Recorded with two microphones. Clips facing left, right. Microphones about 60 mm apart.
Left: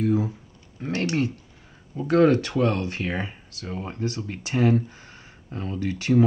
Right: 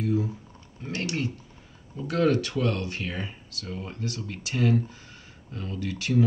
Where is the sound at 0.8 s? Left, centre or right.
Left.